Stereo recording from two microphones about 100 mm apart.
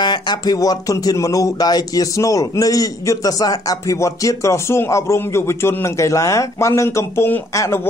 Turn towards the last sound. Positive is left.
turn(degrees=30)  # may be behind; listen again after turning